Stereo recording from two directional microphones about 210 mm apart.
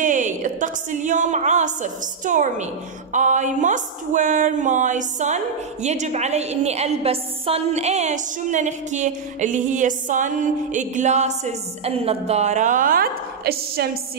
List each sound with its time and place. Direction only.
0.0 s music: 35° right (ahead or behind)